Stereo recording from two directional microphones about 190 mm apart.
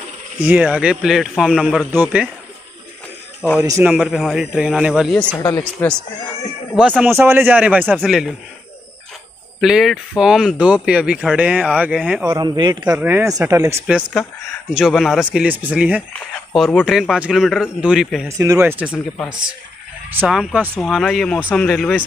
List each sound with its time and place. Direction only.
0.4 s speech: 10° right (ahead or behind)
3.6 s speech: 15° right (ahead or behind)
3.9 s speech: centre (ahead or behind)
5.4 s speech: 15° left (ahead or behind)
7.0 s speech: 10° right (ahead or behind)
9.6 s speech: centre (ahead or behind)
12.4 s speech: 20° right (ahead or behind); by 18.3 s 5° right (ahead or behind)
18.4 s speech: 15° right (ahead or behind)
20.2 s speech: 5° right (ahead or behind)